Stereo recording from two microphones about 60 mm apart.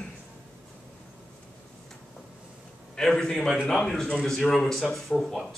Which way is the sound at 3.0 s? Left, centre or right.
Centre.